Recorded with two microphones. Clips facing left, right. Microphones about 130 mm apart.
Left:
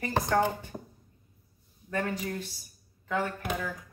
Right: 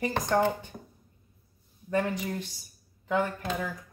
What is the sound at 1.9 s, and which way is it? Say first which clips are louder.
Speech: right 3 dB; 20° right (ahead or behind).